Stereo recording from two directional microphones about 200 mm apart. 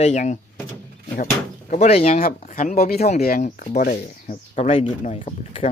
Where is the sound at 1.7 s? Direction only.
30° left (ahead or behind).